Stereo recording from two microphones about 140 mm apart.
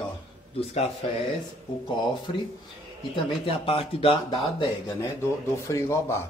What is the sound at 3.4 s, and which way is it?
Speech, 40° left (ahead or behind).